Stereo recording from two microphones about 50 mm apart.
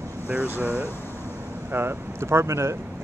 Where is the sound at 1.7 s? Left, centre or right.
Right.